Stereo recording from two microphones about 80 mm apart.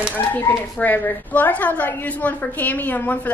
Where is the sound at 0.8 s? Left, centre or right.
Left.